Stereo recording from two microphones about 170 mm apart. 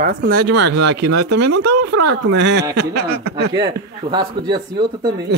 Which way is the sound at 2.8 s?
70° right (ahead or behind).